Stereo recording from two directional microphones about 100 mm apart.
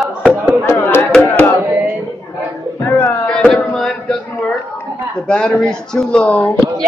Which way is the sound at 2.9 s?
20° left (ahead or behind).